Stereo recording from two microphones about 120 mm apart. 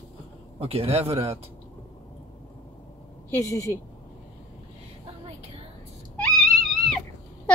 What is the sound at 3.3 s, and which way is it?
Speech, 25° left (ahead or behind).